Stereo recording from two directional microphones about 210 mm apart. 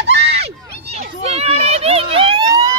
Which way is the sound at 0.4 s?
30° right (ahead or behind).